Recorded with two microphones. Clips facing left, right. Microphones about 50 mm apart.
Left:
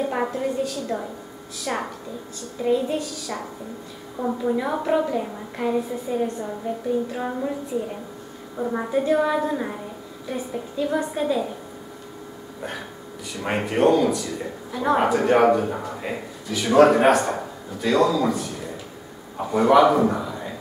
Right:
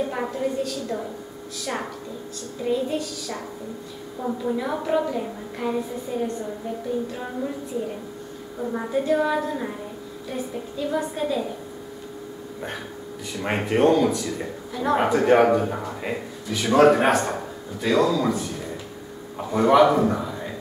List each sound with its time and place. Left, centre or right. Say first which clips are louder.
0.1 s a woman's voice: left 2 dB; centre
8.5 s a woman's voice: left 3 dB; centre
8.8 s a woman's voice: left 1 dB; centre
13.3 s a man's voice: right 1 dB; centre